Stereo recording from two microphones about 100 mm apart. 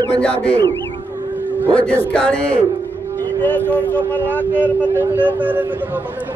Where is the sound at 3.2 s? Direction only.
20° left (ahead or behind).